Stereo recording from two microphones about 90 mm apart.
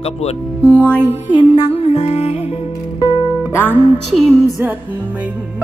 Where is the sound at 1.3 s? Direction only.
80° left.